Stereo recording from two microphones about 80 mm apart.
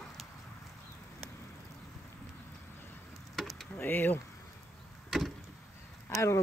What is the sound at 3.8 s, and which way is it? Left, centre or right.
Speech, left.